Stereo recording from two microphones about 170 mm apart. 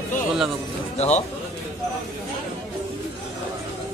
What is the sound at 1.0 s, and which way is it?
Speech, 40° left (ahead or behind).